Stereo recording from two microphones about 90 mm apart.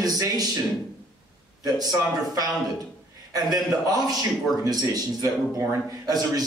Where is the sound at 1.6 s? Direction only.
45° right (ahead or behind).